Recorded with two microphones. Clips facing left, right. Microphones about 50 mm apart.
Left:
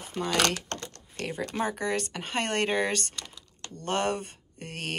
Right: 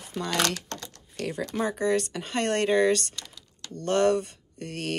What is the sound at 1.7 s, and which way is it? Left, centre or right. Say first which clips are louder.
Speech: right 4 dB; left.